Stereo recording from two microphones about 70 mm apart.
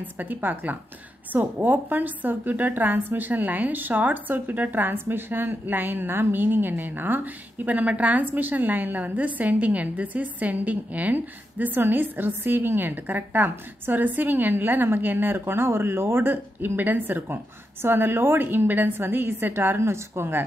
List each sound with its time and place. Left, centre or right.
0.0 s a woman's voice: right